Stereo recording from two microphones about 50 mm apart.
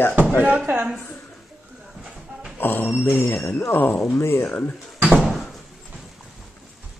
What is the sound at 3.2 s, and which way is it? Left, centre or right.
Speech, left.